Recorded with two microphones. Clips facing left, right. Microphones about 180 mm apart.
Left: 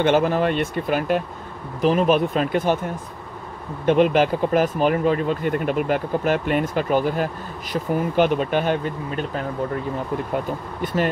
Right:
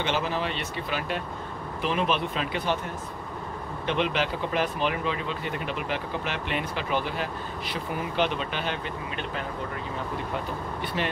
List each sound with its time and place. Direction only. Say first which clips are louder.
0.0 s speech: left 10 dB; 50° left (ahead or behind)
3.8 s speech: left 10 dB; 45° left (ahead or behind)